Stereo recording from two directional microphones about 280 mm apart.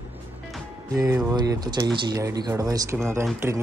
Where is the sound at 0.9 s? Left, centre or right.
Centre.